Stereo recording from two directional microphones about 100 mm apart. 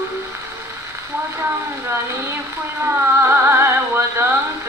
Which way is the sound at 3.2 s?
25° right (ahead or behind).